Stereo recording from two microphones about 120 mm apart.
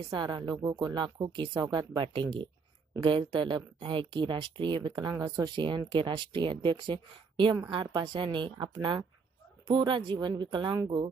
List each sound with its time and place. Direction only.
0.1 s a woman's voice: 40° right (ahead or behind)